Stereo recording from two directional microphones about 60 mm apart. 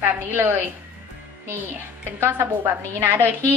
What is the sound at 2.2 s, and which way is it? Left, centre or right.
A woman's voice, right.